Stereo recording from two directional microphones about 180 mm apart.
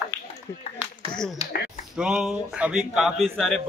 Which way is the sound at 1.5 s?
55° left (ahead or behind).